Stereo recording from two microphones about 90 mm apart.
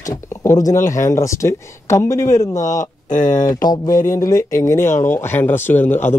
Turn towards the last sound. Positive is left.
turn(degrees=20)  # may be behind; listen again after turning